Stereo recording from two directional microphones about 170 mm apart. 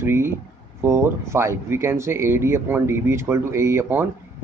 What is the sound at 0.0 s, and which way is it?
Speech, 15° right (ahead or behind).